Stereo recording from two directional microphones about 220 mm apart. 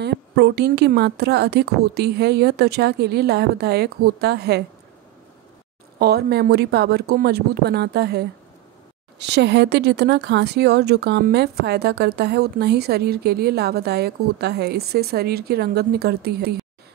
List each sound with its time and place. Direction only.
0.0 s speech: 50° right (ahead or behind)
5.9 s speech: 45° right (ahead or behind)